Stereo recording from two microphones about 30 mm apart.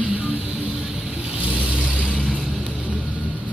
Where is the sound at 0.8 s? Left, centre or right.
Centre.